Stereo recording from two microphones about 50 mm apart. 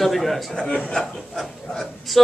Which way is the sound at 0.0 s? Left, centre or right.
Centre.